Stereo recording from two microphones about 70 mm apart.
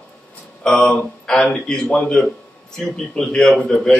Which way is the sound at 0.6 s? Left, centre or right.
Centre.